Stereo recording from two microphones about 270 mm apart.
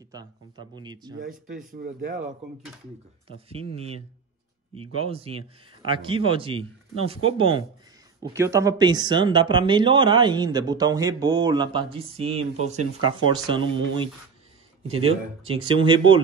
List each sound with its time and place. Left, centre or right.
0.1 s speech: centre
1.2 s speech: right
3.3 s speech: right